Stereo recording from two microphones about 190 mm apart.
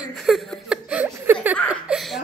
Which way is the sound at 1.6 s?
5° right (ahead or behind).